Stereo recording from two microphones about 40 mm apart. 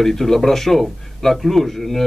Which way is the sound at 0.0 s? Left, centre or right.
Centre.